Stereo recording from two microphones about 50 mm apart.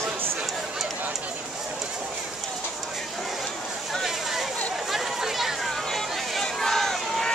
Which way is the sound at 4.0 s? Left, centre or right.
Centre.